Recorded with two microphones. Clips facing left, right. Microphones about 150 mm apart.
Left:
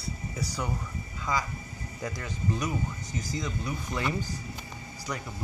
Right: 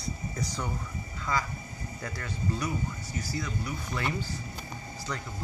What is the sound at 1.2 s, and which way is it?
Speech, 15° left (ahead or behind).